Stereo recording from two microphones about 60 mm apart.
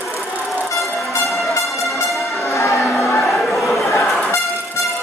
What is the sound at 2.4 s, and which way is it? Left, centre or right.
Music, left.